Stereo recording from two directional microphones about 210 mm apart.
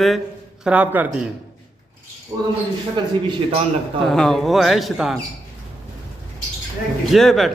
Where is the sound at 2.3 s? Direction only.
20° right (ahead or behind).